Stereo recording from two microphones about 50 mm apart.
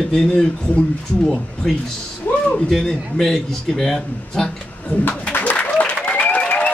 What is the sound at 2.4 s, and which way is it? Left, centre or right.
A man's voice, centre.